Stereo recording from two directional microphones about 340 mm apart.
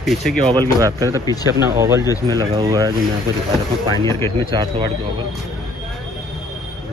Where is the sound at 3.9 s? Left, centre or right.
Centre.